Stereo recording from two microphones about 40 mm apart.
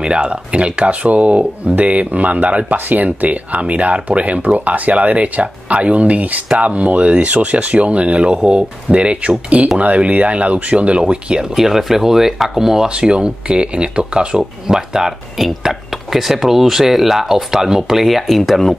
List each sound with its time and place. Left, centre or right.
0.0 s speech: right
11.5 s speech: centre
12.8 s speech: right
14.7 s speech: centre